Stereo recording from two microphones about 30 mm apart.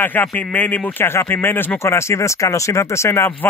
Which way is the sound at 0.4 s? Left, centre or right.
Left.